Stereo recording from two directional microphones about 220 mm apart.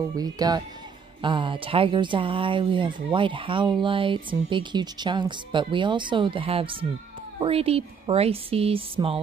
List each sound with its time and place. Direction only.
0.2 s speech: 15° right (ahead or behind)